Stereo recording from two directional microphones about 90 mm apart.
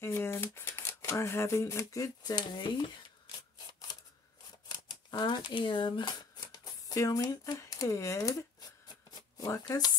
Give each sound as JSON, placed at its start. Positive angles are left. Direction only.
{"t": 0.0, "sound": "shuffling cards", "side_deg": 30}
{"t": 4.6, "sound": "a sound", "side_deg": 50}
{"t": 7.5, "sound": "shuffling cards", "side_deg": 40}
{"t": 9.5, "sound": "speech", "side_deg": 45}